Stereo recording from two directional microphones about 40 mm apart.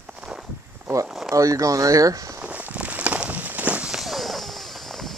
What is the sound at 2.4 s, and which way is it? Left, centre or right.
Walk, right.